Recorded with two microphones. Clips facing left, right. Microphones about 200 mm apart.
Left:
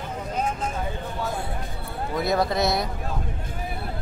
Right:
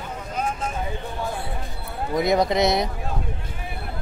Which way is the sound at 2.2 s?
20° right (ahead or behind).